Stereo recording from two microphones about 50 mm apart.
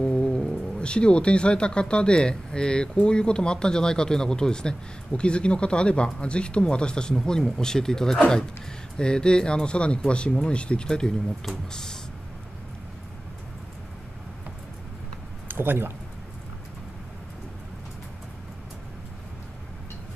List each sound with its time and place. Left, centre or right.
0.0 s speech: left
15.4 s speech: right